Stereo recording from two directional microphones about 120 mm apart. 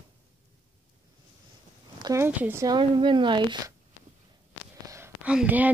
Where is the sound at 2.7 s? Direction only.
40° right (ahead or behind).